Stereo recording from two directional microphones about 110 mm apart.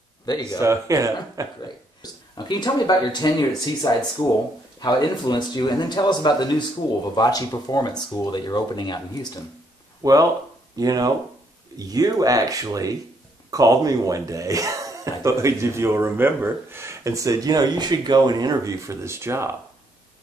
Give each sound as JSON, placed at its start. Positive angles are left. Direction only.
{"t": 0.2, "sound": "speech", "side_deg": 35}
{"t": 0.6, "sound": "speech", "side_deg": -25}
{"t": 2.3, "sound": "speech", "side_deg": 40}
{"t": 10.0, "sound": "speech", "side_deg": -30}